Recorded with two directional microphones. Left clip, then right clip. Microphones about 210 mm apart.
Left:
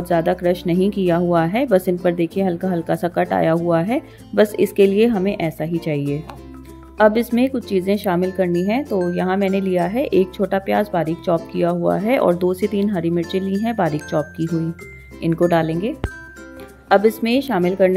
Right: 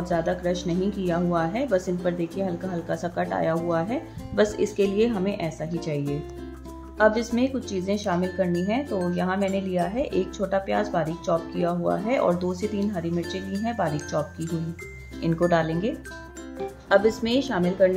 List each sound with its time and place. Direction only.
0.0 s speech: 35° left (ahead or behind)
15.2 s speech: 30° left (ahead or behind)
17.2 s speech: 30° left (ahead or behind)